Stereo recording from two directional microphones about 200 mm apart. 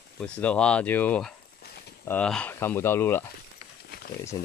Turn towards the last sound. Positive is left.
turn(degrees=20)  # may be behind; listen again after turning